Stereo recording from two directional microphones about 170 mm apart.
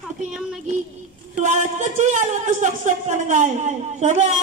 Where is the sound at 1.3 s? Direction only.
45° right (ahead or behind).